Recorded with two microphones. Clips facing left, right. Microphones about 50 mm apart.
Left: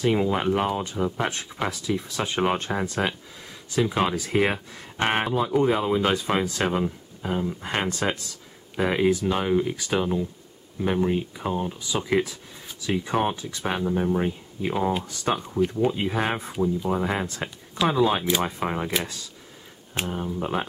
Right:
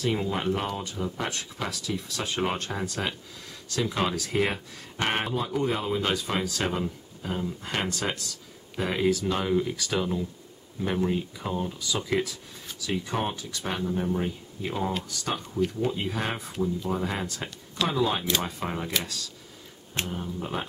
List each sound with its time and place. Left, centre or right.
0.0 s speech: centre